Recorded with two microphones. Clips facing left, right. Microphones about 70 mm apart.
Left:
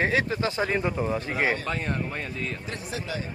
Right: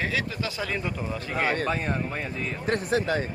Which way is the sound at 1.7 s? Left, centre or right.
Centre.